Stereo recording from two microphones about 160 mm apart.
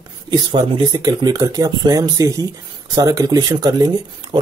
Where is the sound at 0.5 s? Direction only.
30° right (ahead or behind).